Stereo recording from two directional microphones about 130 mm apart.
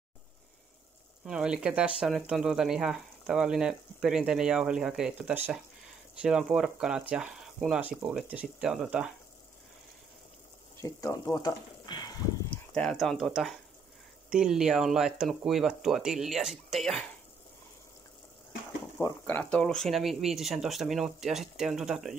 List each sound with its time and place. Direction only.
1.2 s speech: 5° right (ahead or behind)
10.8 s speech: 25° left (ahead or behind)
12.7 s speech: 5° left (ahead or behind)
19.2 s speech: 10° left (ahead or behind)